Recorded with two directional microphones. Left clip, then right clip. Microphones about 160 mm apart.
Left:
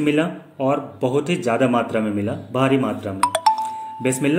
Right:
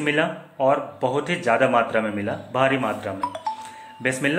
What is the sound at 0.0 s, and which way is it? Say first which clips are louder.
Speech: left 2 dB; 30° left (ahead or behind).